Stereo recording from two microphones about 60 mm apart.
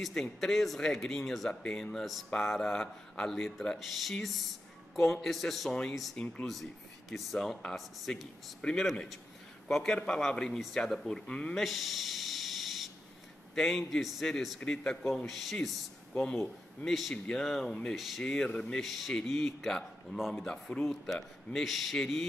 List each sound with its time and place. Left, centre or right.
0.1 s speech: centre
1.5 s speech: centre
7.7 s speech: centre
8.5 s a man's voice: centre
11.5 s a sound: centre
13.6 s speech: centre
15.0 s speech: centre
18.2 s speech: centre
18.8 s speech: centre
20.4 s speech: centre
20.8 s speech: centre